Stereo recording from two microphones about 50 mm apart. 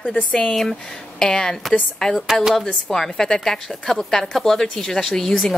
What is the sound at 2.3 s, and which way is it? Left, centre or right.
Speech, centre.